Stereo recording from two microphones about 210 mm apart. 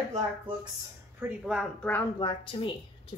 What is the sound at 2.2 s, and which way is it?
Speech, 25° left (ahead or behind).